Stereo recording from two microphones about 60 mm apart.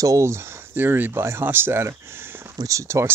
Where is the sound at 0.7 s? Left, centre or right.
Right.